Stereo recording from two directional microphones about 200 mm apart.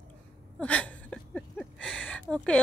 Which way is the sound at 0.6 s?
5° left (ahead or behind).